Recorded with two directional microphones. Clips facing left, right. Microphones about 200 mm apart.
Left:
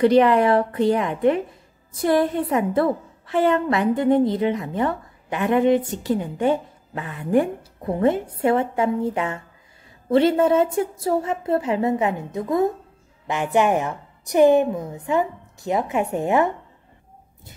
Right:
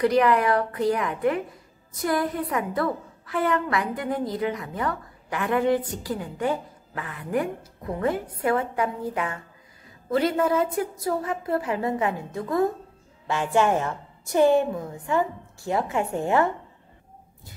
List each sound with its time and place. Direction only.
0.0 s a woman's voice: 25° left (ahead or behind)